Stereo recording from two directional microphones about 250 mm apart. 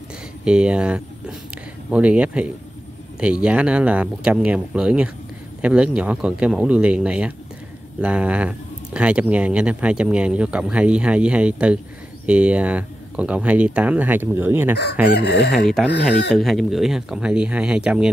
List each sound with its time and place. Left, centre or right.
0.5 s speech: centre
3.4 s speech: centre
15.0 s speech: left
15.5 s speech: centre
15.9 s speech: left
16.3 s speech: centre